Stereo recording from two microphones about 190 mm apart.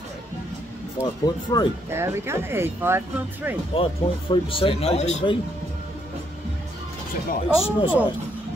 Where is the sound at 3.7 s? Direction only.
30° left (ahead or behind).